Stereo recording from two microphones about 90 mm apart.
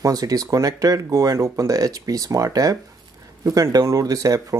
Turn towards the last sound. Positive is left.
turn(degrees=-40)  # may be behind; listen again after turning